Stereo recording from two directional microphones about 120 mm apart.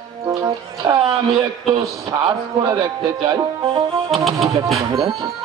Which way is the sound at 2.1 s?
35° right (ahead or behind).